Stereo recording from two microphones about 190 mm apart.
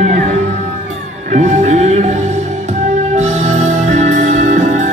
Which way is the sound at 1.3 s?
40° right (ahead or behind).